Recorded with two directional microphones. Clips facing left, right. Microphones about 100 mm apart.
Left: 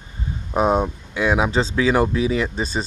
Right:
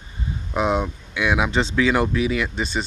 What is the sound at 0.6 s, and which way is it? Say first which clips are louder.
Speech: left 3 dB; 40° left (ahead or behind).